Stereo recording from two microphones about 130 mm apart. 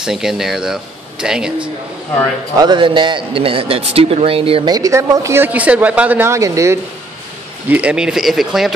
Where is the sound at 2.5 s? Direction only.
35° right (ahead or behind).